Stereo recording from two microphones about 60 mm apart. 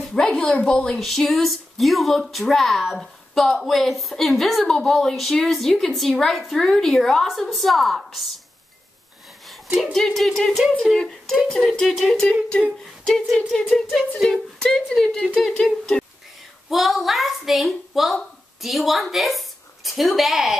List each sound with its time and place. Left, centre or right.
0.0 s a woman's voice: centre
0.9 s a woman's voice: centre
9.9 s a woman's voice: centre
12.1 s humming: centre
13.0 s a woman's voice: centre
13.5 s humming: centre
14.1 s a sound: centre
14.9 s humming: centre
16.6 s a child's voice: centre